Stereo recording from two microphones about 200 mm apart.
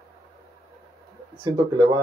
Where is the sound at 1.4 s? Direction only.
20° right (ahead or behind).